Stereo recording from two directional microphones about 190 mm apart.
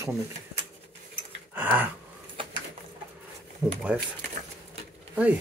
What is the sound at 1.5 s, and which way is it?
Speech, 10° right (ahead or behind).